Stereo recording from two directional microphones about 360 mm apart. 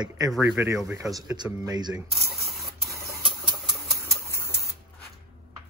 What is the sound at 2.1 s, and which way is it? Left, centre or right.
Spray, centre.